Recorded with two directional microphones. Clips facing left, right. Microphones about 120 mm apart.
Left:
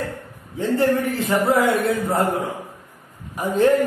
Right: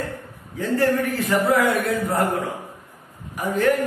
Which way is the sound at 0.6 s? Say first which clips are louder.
Left 1 dB; 25° left (ahead or behind).